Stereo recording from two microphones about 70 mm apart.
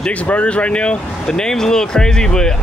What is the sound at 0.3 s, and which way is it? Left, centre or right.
Speech, centre.